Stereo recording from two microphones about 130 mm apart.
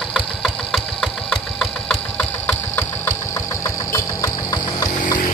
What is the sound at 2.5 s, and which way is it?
Sewing machine, 15° left (ahead or behind).